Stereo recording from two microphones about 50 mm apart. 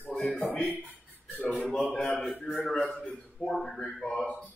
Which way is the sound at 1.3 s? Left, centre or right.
Left.